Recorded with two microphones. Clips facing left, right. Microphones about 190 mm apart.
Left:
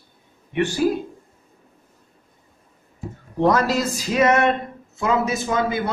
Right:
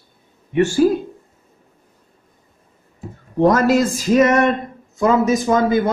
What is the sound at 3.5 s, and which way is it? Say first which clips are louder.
A man's voice: right 5 dB; 50° right (ahead or behind).